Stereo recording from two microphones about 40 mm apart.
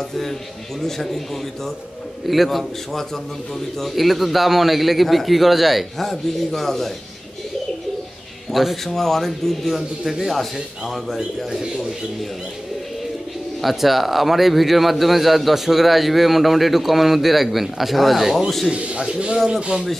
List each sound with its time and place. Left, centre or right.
0.8 s a man's voice: centre
5.9 s a man's voice: centre
8.5 s a man's voice: centre
11.5 s a man's voice: centre
13.6 s a man's voice: centre
18.7 s speech: right
19.3 s a man's voice: centre